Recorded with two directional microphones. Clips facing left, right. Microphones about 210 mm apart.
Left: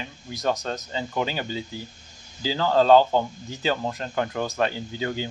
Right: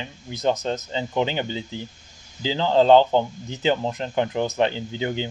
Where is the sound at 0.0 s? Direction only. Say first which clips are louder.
Right 3 dB; 20° right (ahead or behind).